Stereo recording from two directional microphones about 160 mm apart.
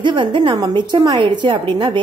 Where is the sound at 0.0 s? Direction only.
30° right (ahead or behind).